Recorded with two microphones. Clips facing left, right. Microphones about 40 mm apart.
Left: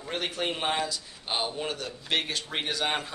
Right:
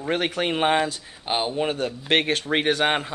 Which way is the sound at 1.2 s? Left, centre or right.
Right.